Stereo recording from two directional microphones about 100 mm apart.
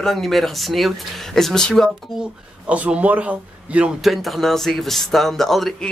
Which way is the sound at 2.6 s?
15° right (ahead or behind).